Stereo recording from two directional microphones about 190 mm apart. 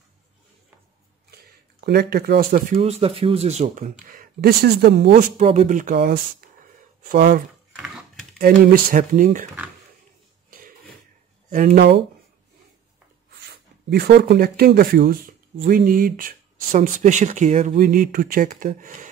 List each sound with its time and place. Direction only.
1.8 s speech: 55° right (ahead or behind)
5.4 s speech: 40° right (ahead or behind)
7.7 s typing: centre (ahead or behind)
8.4 s speech: 50° right (ahead or behind)
11.4 s speech: 45° right (ahead or behind)
13.8 s speech: 55° right (ahead or behind)